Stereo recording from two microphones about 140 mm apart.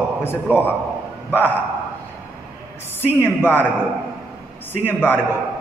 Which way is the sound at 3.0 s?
15° left (ahead or behind).